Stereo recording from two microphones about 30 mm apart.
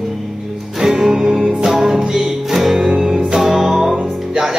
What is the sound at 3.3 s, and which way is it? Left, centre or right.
Music, centre.